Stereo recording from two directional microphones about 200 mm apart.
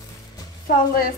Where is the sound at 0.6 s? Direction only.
45° left (ahead or behind).